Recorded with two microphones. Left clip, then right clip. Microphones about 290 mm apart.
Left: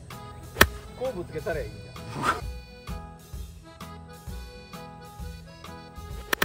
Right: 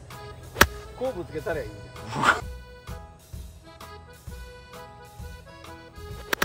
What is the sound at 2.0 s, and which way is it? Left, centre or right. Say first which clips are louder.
Music: right 6 dB; right.